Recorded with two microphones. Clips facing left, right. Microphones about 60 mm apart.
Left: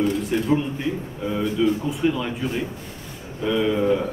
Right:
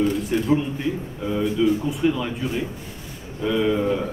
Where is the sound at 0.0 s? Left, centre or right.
Centre.